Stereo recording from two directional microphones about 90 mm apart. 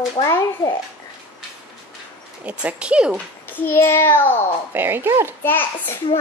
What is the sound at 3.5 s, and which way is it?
Speech, 25° left (ahead or behind).